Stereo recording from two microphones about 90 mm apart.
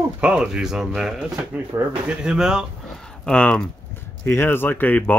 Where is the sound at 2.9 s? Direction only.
10° left (ahead or behind).